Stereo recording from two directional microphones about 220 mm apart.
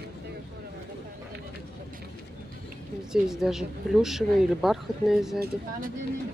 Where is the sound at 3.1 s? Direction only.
Centre (ahead or behind).